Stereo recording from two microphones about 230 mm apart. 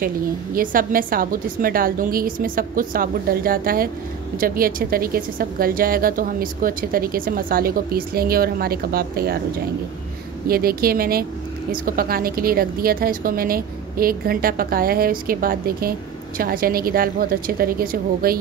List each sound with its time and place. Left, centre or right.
0.6 s a woman's voice: right
10.5 s a woman's voice: right